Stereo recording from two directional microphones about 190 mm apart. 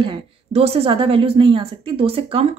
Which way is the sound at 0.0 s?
30° right (ahead or behind).